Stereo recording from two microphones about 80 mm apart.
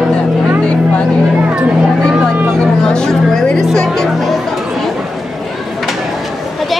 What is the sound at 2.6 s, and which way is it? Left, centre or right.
Vehicle, centre.